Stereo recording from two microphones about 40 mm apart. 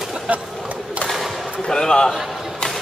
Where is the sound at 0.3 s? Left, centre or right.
Right.